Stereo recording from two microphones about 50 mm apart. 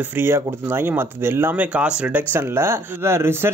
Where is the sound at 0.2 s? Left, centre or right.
Right.